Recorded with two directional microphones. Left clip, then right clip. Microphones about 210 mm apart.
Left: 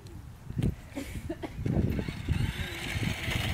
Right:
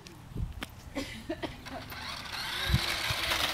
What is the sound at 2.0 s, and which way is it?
Vehicle, centre (ahead or behind).